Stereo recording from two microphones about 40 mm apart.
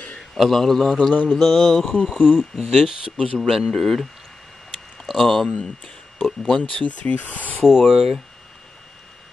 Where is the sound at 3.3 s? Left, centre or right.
Centre.